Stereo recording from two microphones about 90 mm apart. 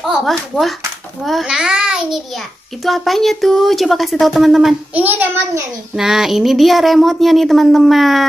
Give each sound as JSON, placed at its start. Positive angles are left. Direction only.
{"t": 0.0, "sound": "a child's voice", "side_deg": 0}
{"t": 4.9, "sound": "a child's voice", "side_deg": -20}
{"t": 5.9, "sound": "speech", "side_deg": -5}